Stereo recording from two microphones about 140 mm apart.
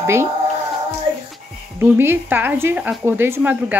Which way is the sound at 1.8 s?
15° right (ahead or behind).